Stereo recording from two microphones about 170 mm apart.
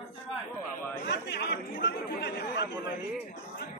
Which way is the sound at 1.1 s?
90° left.